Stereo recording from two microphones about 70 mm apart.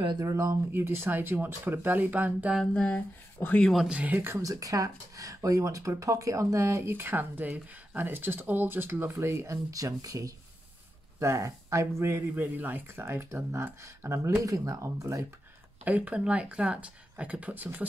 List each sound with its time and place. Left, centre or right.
0.3 s speech: right
0.7 s speech: right
2.6 s a sound: centre
3.4 s speech: left
3.9 s speech: right
4.4 s speech: right
6.9 s speech: right
11.1 s speech: right
12.5 s speech: right
14.4 s speech: right
15.8 s speech: right